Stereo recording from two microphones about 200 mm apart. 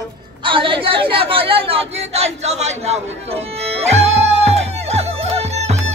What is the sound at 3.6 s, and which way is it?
Music, 30° right (ahead or behind).